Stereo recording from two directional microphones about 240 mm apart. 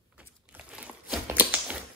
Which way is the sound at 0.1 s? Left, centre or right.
Centre.